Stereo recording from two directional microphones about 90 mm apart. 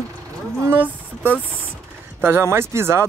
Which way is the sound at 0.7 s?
20° right (ahead or behind).